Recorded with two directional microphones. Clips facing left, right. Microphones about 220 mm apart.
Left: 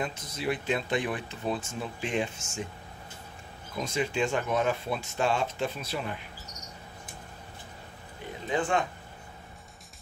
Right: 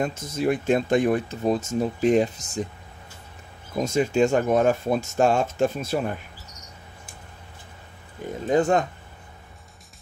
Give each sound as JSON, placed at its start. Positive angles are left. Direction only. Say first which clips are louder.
{"t": 0.0, "sound": "speech", "louder": "right 8 dB", "side_deg": -45}
{"t": 3.7, "sound": "speech", "louder": "right 8 dB", "side_deg": -45}
{"t": 8.5, "sound": "speech", "louder": "right 8 dB", "side_deg": -40}